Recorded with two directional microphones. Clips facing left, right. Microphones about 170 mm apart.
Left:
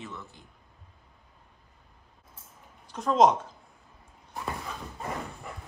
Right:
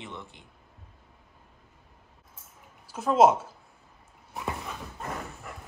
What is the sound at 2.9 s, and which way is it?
Speech, 5° right (ahead or behind).